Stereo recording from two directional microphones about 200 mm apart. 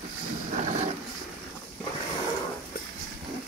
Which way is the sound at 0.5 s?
35° right (ahead or behind).